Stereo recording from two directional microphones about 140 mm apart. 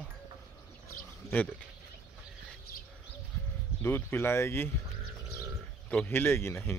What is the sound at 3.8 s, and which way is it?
Speech, 15° left (ahead or behind).